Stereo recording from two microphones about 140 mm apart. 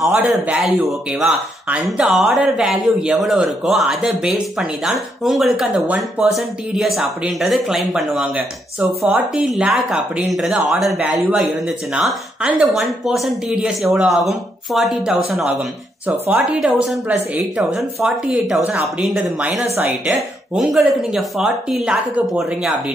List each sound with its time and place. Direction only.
0.0 s a woman's voice: 10° right (ahead or behind)
20.2 s speech: centre (ahead or behind)